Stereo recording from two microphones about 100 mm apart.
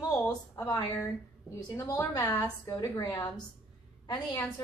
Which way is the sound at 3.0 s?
45° left (ahead or behind).